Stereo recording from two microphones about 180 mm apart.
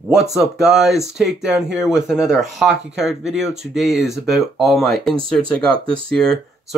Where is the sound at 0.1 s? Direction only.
Centre (ahead or behind).